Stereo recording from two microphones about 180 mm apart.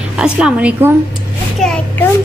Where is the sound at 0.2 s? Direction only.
5° right (ahead or behind).